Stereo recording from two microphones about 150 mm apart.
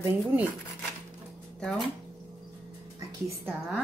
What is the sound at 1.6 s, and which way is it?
Speech, 5° left (ahead or behind).